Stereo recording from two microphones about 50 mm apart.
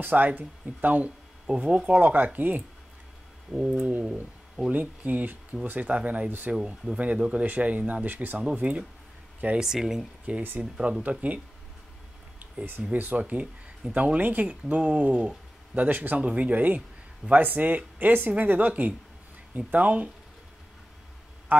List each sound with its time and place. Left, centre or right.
0.0 s speech: right
1.9 s speech: right
3.5 s speech: centre
4.7 s speech: right
8.5 s speech: right
9.6 s speech: centre
10.3 s speech: right
12.9 s speech: right
14.5 s speech: right
21.5 s a man's voice: right